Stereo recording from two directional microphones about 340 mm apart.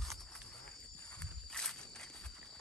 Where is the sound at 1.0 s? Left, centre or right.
Centre.